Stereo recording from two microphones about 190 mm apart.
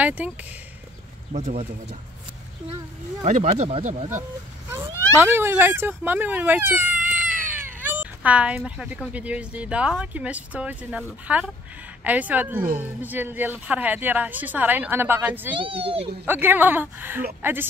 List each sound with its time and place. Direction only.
0.0 s speech: 10° right (ahead or behind)
1.3 s speech: 35° right (ahead or behind)
3.3 s speech: 35° right (ahead or behind)
5.2 s speech: 10° right (ahead or behind)
15.5 s a child's voice: 30° right (ahead or behind)
16.3 s speech: 10° right (ahead or behind)